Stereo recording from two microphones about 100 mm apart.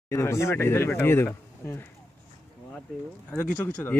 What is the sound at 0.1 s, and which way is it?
Speech, 30° left (ahead or behind).